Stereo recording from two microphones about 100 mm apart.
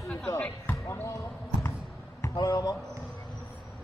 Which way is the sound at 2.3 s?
40° left (ahead or behind).